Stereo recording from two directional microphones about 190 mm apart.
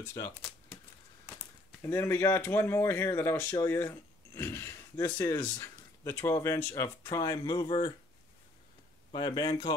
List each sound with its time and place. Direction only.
0.0 s speech: 15° left (ahead or behind)
1.8 s speech: 15° left (ahead or behind)
9.1 s speech: 25° left (ahead or behind)